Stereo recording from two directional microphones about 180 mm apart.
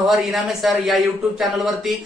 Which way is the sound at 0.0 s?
Centre (ahead or behind).